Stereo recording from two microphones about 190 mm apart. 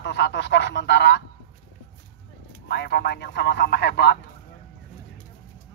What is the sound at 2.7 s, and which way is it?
Speech, 60° left (ahead or behind).